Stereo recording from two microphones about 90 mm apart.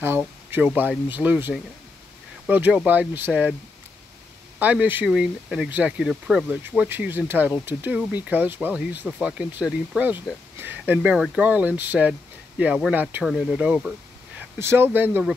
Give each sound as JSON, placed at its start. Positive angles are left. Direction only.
{"t": 0.7, "sound": "speech", "side_deg": -20}
{"t": 4.6, "sound": "speech", "side_deg": -15}
{"t": 5.0, "sound": "speech", "side_deg": -10}
{"t": 6.8, "sound": "speech", "side_deg": -20}
{"t": 10.6, "sound": "speech", "side_deg": -20}
{"t": 14.6, "sound": "speech", "side_deg": -25}